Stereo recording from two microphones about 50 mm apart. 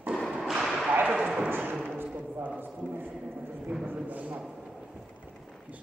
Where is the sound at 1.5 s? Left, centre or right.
Right.